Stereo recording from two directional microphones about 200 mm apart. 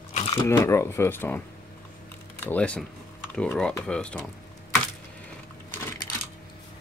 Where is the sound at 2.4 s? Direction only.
5° left (ahead or behind).